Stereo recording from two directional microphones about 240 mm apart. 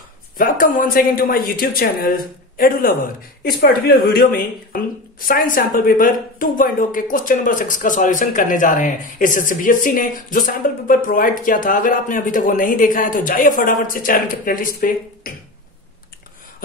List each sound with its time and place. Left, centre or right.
0.4 s a woman's voice: left